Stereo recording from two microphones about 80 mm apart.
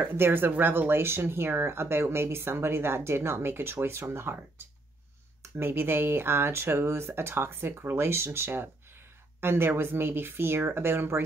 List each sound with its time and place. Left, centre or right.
0.0 s speech: right